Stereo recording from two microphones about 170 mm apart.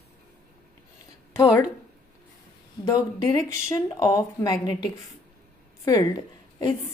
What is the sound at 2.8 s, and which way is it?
A woman's voice, 20° left (ahead or behind).